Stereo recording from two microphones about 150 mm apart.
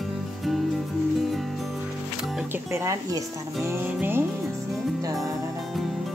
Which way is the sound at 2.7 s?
20° right (ahead or behind).